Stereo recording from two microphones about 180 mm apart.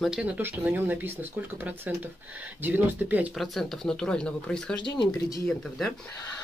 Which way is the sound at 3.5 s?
5° left (ahead or behind).